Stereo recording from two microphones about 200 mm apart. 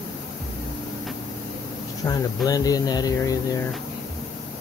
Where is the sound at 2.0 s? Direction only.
20° left (ahead or behind).